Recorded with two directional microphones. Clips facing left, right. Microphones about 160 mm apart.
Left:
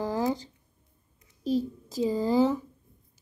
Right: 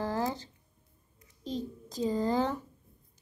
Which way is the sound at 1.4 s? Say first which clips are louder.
Left 9 dB; 10° left (ahead or behind).